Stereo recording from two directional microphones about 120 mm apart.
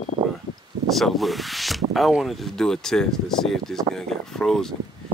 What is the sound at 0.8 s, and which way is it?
Speech, centre (ahead or behind).